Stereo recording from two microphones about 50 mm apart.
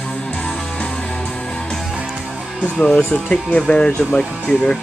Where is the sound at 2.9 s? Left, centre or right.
Centre.